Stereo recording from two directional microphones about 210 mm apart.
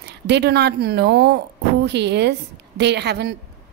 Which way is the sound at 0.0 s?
55° right (ahead or behind).